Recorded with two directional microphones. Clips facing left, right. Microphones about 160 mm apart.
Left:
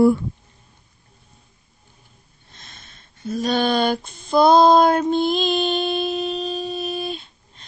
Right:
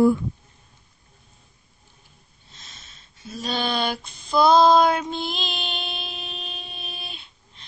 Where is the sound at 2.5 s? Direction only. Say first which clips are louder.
Left 3 dB; 55° left (ahead or behind).